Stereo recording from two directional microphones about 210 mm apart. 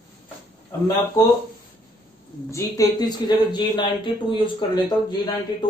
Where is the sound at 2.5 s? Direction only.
20° left (ahead or behind).